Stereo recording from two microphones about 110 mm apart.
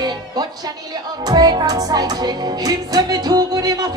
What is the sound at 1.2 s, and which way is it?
Music, 40° right (ahead or behind).